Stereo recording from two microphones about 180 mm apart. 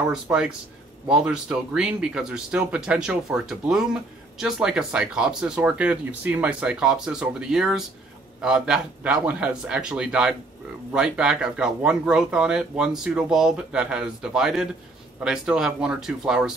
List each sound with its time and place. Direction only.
0.1 s speech: 5° right (ahead or behind)